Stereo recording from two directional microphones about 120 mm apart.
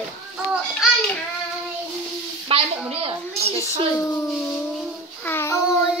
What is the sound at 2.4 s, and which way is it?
A woman's voice, 50° right (ahead or behind).